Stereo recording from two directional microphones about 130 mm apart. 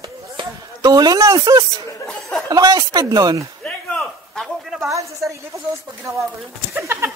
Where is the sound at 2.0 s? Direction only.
Centre (ahead or behind).